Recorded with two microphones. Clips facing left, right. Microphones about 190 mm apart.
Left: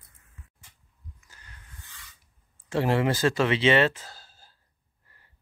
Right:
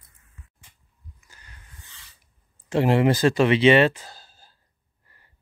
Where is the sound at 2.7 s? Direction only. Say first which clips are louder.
Right 5 dB; 20° right (ahead or behind).